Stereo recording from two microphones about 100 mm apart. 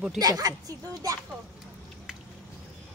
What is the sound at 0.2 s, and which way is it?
Speech, 40° right (ahead or behind).